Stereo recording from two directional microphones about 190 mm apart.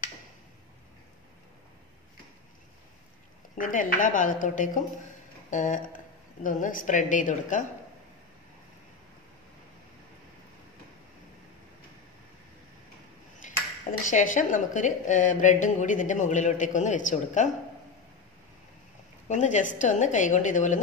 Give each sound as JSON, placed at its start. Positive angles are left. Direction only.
{"t": 3.5, "sound": "a woman's voice", "side_deg": 45}
{"t": 5.5, "sound": "a sound", "side_deg": 40}
{"t": 6.4, "sound": "a woman's voice", "side_deg": 45}
{"t": 13.4, "sound": "ping", "side_deg": 40}
{"t": 14.0, "sound": "a woman's voice", "side_deg": 45}
{"t": 19.2, "sound": "a woman's voice", "side_deg": 40}